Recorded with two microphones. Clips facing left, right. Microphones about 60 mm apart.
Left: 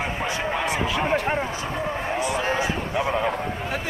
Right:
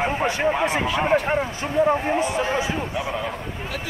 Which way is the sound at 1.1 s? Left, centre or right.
Centre.